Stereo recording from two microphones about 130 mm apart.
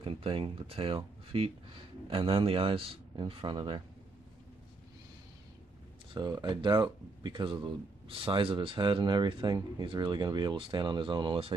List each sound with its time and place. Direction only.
0.0 s a man's voice: 45° right (ahead or behind)
6.1 s speech: 30° right (ahead or behind)